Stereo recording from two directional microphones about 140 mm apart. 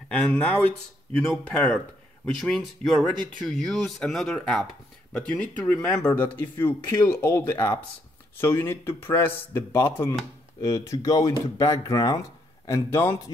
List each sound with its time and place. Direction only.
0.1 s speech: 10° left (ahead or behind)
5.6 s speech: 5° left (ahead or behind)